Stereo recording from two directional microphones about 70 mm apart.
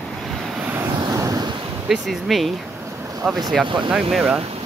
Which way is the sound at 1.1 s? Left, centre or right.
Right.